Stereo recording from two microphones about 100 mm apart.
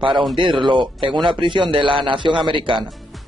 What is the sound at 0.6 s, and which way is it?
A man's voice, 55° right (ahead or behind).